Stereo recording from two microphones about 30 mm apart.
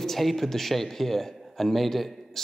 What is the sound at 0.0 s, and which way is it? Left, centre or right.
A man's voice, centre.